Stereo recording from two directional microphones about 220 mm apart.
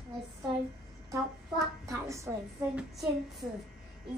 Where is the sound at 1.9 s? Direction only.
15° right (ahead or behind).